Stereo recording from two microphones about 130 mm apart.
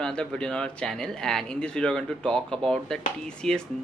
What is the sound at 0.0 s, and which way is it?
Speech, 5° left (ahead or behind).